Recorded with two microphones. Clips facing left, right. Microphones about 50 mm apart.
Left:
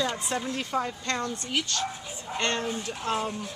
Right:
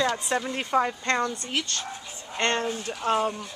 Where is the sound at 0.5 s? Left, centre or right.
Right.